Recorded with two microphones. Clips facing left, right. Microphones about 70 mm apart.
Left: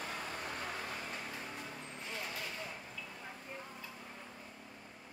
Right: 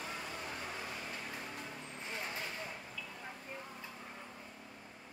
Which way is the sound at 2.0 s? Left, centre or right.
Centre.